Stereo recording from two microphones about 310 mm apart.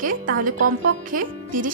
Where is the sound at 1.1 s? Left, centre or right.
Right.